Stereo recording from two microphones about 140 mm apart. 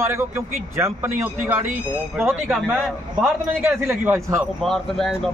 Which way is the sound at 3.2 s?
15° right (ahead or behind).